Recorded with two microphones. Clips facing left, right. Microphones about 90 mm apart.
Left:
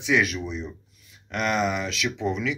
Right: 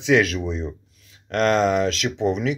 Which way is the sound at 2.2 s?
60° right (ahead or behind).